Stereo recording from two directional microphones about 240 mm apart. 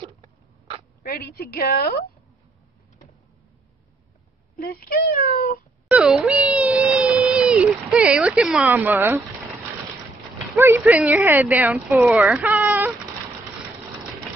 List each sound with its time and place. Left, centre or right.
0.0 s rodents: right
1.0 s speech: left
4.6 s speech: left
5.9 s a sound: centre
10.5 s speech: centre